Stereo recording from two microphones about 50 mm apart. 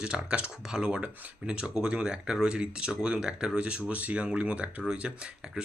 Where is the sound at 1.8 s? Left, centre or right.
Centre.